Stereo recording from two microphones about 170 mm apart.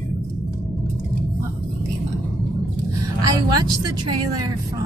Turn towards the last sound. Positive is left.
turn(degrees=-25)  # may be behind; listen again after turning